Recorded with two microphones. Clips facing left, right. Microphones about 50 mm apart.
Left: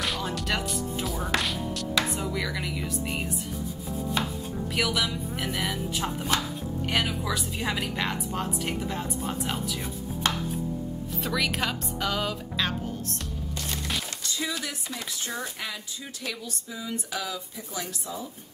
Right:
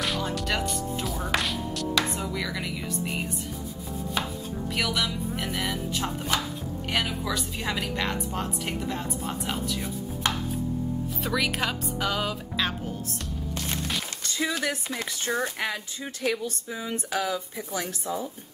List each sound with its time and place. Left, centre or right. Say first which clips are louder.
0.0 s speech: right 1 dB; centre
11.1 s speech: left 1 dB; centre
14.4 s speech: right 6 dB; right